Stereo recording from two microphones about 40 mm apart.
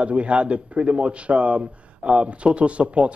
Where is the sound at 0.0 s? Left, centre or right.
Right.